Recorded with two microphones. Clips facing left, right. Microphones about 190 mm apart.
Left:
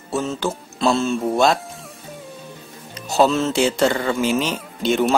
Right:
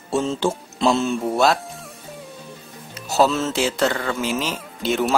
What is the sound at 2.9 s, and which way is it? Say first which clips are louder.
Speech: left 2 dB; 5° right (ahead or behind).